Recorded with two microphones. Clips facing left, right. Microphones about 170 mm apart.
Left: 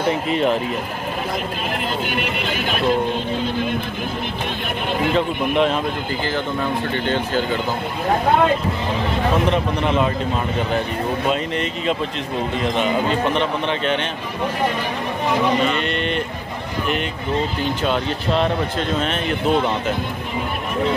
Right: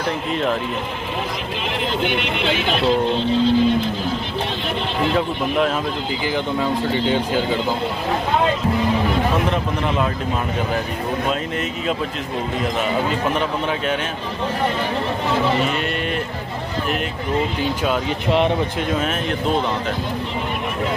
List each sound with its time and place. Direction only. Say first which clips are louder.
0.3 s speech: left 2 dB; centre (ahead or behind)
2.0 s speech: right 2 dB; 45° left (ahead or behind)
7.1 s speech: even; 15° right (ahead or behind)
9.5 s speech: left 2 dB; centre (ahead or behind)
15.7 s speech: left 1 dB; 5° right (ahead or behind)
18.3 s speech: right 2 dB; 15° right (ahead or behind)